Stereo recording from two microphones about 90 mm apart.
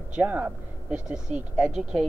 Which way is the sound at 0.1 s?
15° right (ahead or behind).